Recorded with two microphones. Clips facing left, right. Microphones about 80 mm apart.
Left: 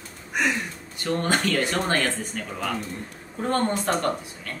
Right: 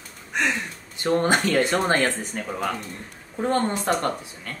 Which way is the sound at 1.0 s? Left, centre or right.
Right.